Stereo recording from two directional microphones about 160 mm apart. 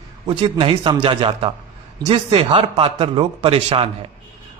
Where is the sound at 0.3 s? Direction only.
35° right (ahead or behind).